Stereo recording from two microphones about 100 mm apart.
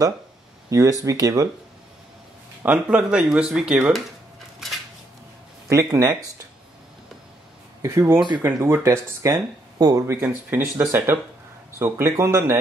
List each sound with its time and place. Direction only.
0.7 s speech: 35° right (ahead or behind)
2.6 s speech: 15° right (ahead or behind)
5.7 s speech: 30° right (ahead or behind)
7.8 s speech: 30° right (ahead or behind)